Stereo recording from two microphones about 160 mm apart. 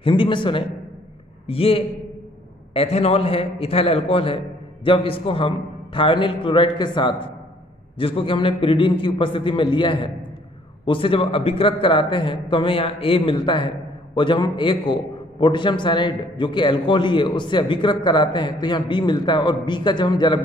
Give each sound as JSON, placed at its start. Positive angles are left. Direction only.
{"t": 0.0, "sound": "a man's voice", "side_deg": 30}